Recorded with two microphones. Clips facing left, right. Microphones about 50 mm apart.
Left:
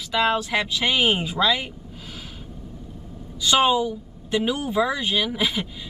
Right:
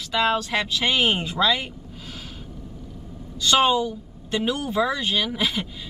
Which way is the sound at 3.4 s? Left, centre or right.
Centre.